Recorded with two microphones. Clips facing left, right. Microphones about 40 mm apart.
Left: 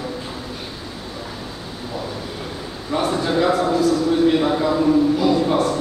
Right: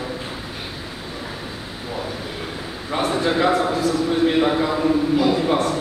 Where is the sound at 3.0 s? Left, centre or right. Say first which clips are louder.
Even; centre.